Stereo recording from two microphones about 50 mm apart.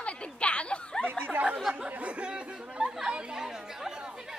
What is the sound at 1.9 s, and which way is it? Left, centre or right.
Chatter, right.